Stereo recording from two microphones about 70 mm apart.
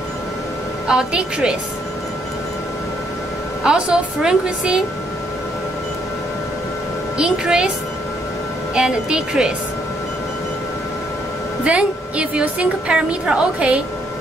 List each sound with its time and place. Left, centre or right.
0.8 s a woman's voice: centre
3.6 s a woman's voice: centre
7.2 s a woman's voice: centre
8.7 s a woman's voice: centre
11.6 s a woman's voice: centre